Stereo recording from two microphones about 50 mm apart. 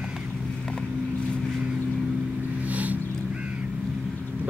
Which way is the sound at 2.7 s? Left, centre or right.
Right.